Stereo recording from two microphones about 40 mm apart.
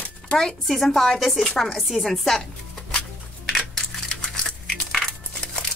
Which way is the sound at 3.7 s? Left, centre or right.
Centre.